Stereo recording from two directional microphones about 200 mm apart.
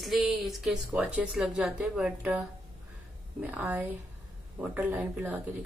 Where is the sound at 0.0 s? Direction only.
Centre (ahead or behind).